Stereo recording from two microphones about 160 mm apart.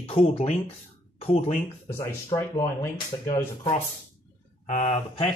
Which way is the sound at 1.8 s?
20° left (ahead or behind).